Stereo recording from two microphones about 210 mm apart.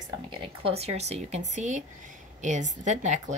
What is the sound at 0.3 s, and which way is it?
A woman's voice, 25° right (ahead or behind).